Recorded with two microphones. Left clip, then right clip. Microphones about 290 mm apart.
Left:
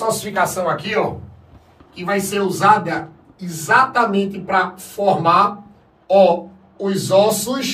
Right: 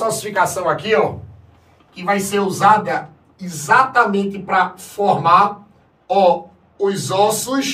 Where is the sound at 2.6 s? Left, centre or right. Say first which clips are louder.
Right 1 dB; centre.